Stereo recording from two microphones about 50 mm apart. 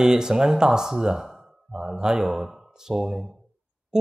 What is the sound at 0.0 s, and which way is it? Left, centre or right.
Speech, centre.